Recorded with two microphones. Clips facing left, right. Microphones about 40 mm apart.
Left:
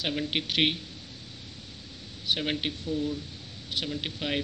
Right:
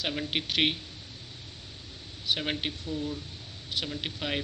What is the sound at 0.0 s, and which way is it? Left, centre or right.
Speech, centre.